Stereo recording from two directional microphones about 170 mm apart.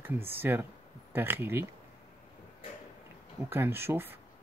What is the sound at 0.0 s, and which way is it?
Speech, 10° right (ahead or behind).